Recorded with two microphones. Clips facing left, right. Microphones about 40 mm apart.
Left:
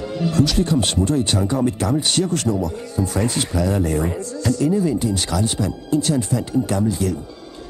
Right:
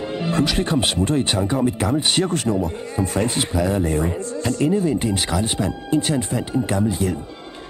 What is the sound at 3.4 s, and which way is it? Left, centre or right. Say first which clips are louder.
Speech: even; centre.